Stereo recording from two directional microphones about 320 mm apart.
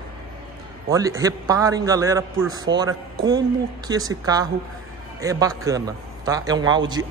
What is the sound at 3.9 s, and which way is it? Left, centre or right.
A man's voice, centre.